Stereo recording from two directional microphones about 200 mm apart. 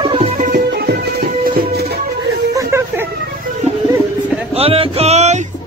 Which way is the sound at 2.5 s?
15° right (ahead or behind).